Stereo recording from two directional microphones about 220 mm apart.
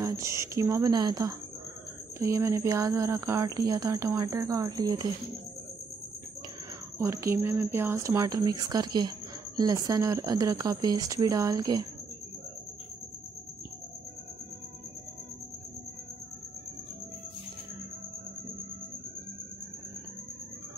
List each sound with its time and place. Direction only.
0.0 s speech: 15° right (ahead or behind)
7.0 s speech: 10° right (ahead or behind)